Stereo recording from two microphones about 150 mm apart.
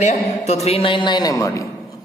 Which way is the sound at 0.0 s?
45° left (ahead or behind).